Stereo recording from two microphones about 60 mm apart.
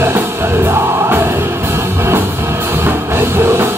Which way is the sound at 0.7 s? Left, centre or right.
Right.